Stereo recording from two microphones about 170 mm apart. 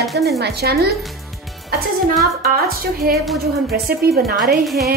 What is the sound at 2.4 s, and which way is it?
A woman's voice, 60° right (ahead or behind).